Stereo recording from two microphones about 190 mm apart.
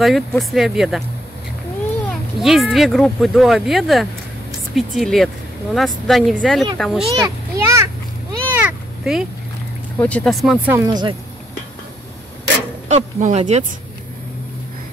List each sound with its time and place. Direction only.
0.0 s speech: centre (ahead or behind)
2.4 s speech: centre (ahead or behind)
7.1 s a sound: 15° right (ahead or behind)
9.9 s speech: 5° left (ahead or behind)
10.7 s speech: 20° right (ahead or behind)
12.8 s speech: 40° right (ahead or behind)